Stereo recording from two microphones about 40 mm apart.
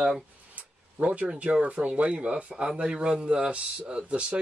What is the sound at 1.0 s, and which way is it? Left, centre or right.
Speech, right.